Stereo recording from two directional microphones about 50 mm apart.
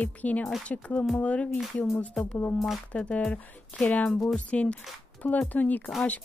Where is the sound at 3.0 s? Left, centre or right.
Centre.